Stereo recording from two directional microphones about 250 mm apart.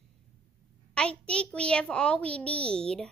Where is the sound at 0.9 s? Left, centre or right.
Centre.